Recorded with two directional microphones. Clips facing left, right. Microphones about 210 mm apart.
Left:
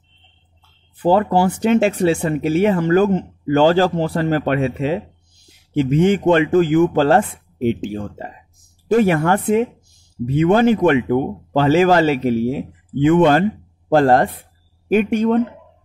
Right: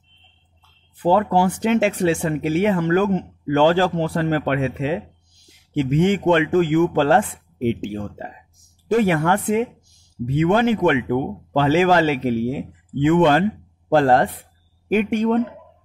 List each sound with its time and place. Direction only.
1.0 s speech: 35° left (ahead or behind)